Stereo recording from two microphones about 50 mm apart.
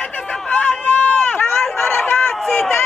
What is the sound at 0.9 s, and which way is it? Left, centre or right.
Run, left.